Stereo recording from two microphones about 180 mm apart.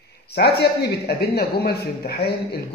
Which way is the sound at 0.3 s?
65° left (ahead or behind).